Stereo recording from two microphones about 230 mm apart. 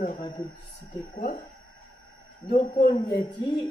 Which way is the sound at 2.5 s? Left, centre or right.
Left.